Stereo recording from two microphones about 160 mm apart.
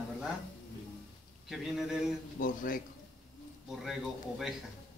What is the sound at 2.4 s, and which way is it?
Speech, 60° left (ahead or behind).